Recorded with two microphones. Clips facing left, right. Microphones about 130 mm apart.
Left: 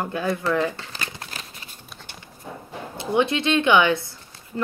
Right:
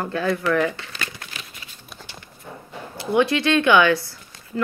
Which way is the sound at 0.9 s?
30° left (ahead or behind).